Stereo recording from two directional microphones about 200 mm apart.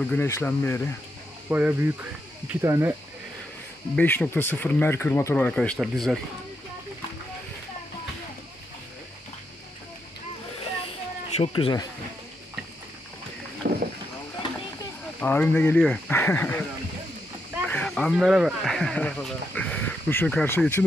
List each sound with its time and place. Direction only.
0.0 s speech: 10° left (ahead or behind)
1.5 s speech: 10° right (ahead or behind)
3.9 s speech: 5° left (ahead or behind)
11.3 s speech: 30° left (ahead or behind)
13.6 s boat: 50° right (ahead or behind)
15.1 s speech: 10° left (ahead or behind)
17.6 s speech: 5° left (ahead or behind)